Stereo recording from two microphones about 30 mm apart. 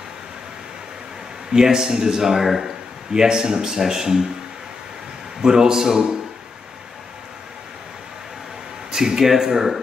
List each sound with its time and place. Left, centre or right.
1.5 s speech: centre
3.1 s speech: right
5.4 s speech: right
8.9 s speech: right
9.2 s speech: centre